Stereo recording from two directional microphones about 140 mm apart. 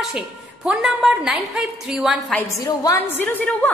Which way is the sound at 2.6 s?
25° left (ahead or behind).